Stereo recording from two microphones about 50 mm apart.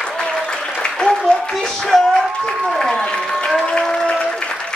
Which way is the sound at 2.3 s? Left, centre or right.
Centre.